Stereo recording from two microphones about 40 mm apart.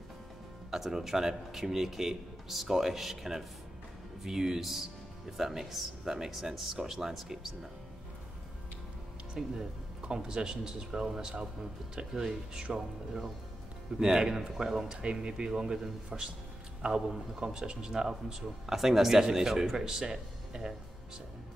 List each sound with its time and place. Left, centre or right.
0.7 s speech: centre
9.4 s speech: centre
13.9 s speech: centre